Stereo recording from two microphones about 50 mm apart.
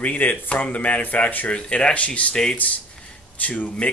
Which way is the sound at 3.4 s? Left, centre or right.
Left.